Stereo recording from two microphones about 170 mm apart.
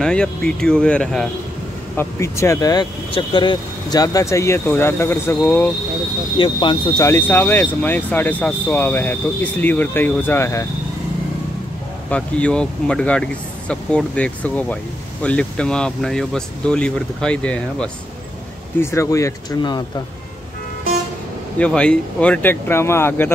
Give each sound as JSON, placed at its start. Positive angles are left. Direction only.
{"t": 0.0, "sound": "speech", "side_deg": 5}
{"t": 2.0, "sound": "speech", "side_deg": 15}
{"t": 6.3, "sound": "speech", "side_deg": 30}
{"t": 12.1, "sound": "speech", "side_deg": 5}
{"t": 21.5, "sound": "speech", "side_deg": 5}